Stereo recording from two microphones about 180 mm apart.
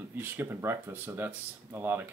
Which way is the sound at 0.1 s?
10° right (ahead or behind).